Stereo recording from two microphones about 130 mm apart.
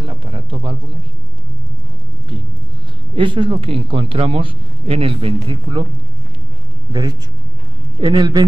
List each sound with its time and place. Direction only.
0.0 s a sound: 40° right (ahead or behind)
3.2 s a man's voice: 40° right (ahead or behind)
6.9 s a man's voice: 35° right (ahead or behind)